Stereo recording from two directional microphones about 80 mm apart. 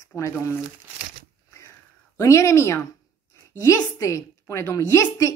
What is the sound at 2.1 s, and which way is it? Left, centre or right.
A woman's voice, left.